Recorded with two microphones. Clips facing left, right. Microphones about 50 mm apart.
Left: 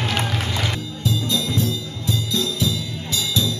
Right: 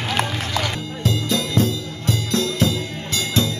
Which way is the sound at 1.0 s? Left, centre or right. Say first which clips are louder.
Right 1 dB; right.